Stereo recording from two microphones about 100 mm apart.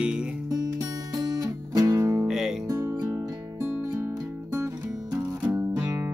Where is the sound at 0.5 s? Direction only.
40° right (ahead or behind).